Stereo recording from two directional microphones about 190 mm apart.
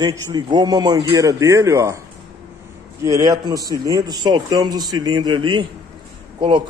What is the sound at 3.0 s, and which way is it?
A man's voice, 20° right (ahead or behind).